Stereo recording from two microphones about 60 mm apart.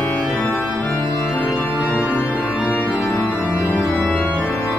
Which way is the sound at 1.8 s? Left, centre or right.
Right.